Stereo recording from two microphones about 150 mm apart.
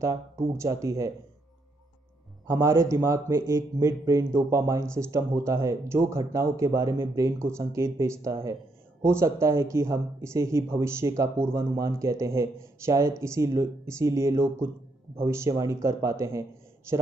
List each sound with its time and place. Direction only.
0.0 s speech: 20° right (ahead or behind)
2.4 s speech: 20° right (ahead or behind)